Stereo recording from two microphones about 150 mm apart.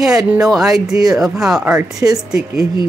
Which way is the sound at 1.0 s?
20° right (ahead or behind).